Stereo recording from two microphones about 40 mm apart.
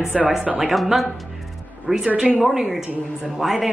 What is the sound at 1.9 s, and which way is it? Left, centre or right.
Speech, right.